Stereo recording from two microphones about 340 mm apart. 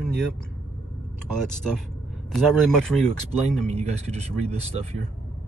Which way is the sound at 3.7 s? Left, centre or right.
Centre.